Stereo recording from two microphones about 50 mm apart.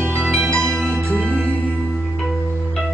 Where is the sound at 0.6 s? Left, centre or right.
Centre.